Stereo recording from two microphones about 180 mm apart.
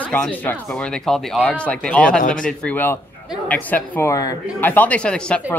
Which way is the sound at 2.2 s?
50° left (ahead or behind).